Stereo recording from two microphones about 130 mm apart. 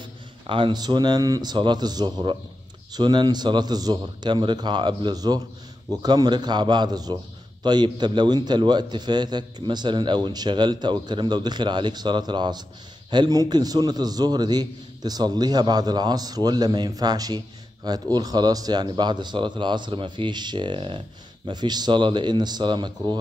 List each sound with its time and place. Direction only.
0.5 s a man's voice: 40° right (ahead or behind)